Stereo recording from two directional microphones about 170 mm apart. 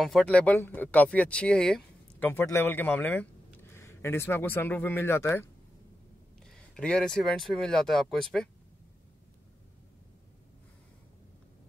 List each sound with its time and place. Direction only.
0.0 s speech: 5° left (ahead or behind)